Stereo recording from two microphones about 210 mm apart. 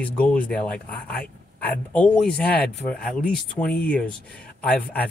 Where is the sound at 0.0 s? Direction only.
5° left (ahead or behind).